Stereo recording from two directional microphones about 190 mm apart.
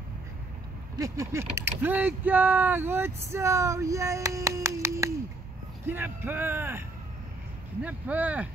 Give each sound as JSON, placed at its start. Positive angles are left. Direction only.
{"t": 0.9, "sound": "speech", "side_deg": -15}
{"t": 7.8, "sound": "speech", "side_deg": -10}